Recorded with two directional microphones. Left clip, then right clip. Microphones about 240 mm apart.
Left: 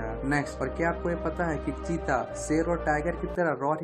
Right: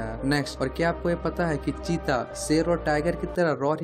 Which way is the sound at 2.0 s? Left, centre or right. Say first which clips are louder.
Right 2 dB; right.